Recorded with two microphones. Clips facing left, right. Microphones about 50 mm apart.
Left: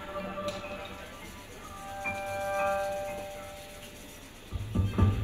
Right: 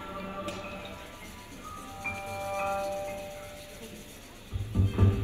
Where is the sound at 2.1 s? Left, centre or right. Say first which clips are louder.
Left 2 dB; left.